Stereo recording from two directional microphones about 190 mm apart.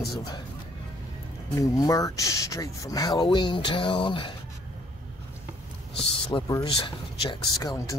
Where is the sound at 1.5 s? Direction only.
20° left (ahead or behind).